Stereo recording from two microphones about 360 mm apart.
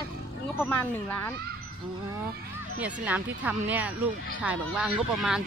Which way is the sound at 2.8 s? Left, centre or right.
Centre.